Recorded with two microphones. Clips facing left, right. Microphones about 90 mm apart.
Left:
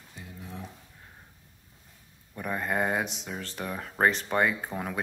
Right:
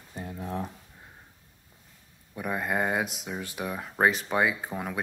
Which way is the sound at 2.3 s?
5° right (ahead or behind).